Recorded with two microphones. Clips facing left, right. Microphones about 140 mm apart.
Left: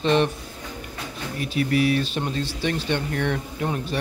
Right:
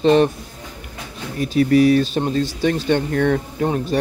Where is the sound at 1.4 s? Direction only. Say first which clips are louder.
Right 8 dB; 35° right (ahead or behind).